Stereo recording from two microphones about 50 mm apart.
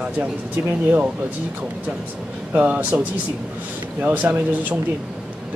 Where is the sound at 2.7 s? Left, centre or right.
Right.